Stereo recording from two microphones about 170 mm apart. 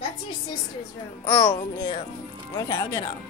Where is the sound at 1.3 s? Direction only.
30° left (ahead or behind).